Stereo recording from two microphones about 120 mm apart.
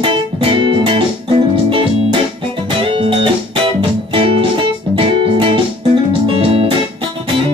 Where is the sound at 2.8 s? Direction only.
45° right (ahead or behind).